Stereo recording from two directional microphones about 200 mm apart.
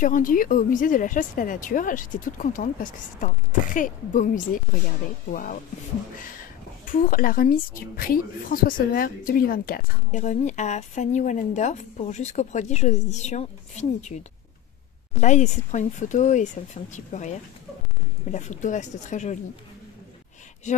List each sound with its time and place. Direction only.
0.0 s a woman's voice: 40° left (ahead or behind)
5.3 s speech: 45° left (ahead or behind)
6.9 s a woman's voice: 45° left (ahead or behind)